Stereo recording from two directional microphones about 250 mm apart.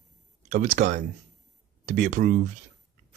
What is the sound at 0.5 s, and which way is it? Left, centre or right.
A man's voice, right.